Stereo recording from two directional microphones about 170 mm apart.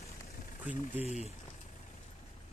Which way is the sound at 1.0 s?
40° left (ahead or behind).